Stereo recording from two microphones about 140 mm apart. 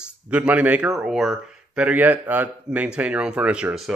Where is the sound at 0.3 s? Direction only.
10° right (ahead or behind).